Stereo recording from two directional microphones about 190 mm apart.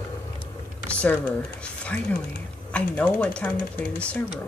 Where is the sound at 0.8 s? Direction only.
5° left (ahead or behind).